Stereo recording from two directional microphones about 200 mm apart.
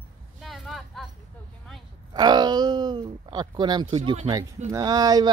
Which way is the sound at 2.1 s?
20° right (ahead or behind).